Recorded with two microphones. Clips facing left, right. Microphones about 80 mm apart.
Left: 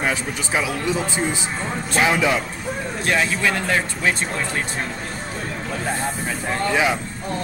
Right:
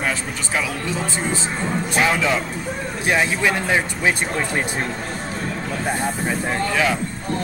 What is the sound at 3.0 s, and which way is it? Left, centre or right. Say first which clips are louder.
Speech: right 2 dB; centre.